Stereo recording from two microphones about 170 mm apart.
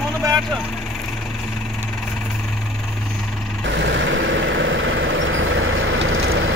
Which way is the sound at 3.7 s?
90° right.